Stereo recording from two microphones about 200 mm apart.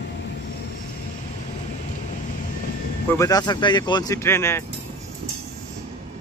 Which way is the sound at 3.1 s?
15° left (ahead or behind).